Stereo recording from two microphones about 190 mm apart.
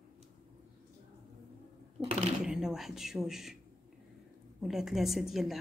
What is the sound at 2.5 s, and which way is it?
A woman's voice, 5° right (ahead or behind).